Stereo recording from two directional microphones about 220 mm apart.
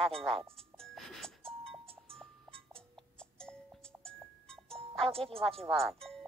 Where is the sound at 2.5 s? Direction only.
25° right (ahead or behind).